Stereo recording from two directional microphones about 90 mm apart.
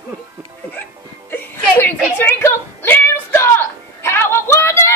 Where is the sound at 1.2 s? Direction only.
20° left (ahead or behind).